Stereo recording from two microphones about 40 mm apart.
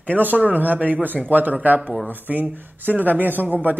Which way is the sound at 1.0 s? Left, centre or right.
Right.